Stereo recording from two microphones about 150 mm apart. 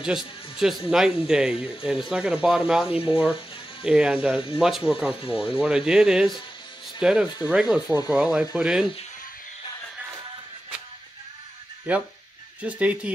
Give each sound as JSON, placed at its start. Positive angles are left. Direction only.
{"t": 0.0, "sound": "speech", "side_deg": -5}
{"t": 11.9, "sound": "speech", "side_deg": -10}